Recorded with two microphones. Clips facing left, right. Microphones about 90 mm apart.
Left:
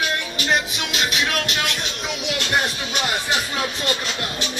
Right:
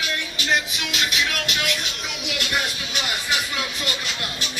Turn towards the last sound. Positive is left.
turn(degrees=30)  # may be behind; listen again after turning